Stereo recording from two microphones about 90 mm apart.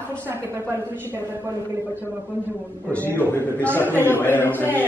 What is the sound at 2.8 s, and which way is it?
Speech, 20° left (ahead or behind).